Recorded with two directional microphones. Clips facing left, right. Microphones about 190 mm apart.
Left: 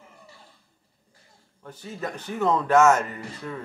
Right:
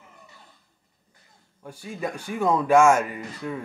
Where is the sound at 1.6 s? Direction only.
10° right (ahead or behind).